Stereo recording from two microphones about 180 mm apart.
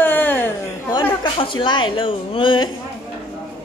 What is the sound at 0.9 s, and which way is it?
Speech, 25° left (ahead or behind).